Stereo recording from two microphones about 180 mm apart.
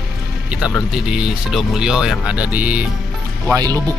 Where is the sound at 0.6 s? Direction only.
5° right (ahead or behind).